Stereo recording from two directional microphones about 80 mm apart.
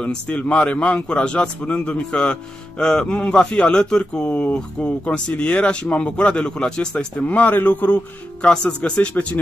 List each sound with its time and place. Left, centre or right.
0.0 s speech: centre
4.3 s speech: left